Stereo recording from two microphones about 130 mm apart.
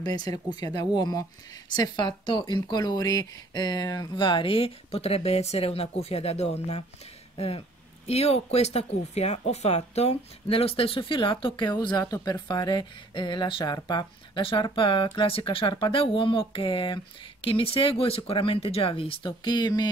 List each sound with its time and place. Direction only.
0.0 s speech: 30° left (ahead or behind)